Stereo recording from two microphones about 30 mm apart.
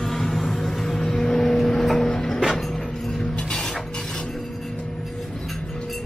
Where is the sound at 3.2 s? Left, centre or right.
Left.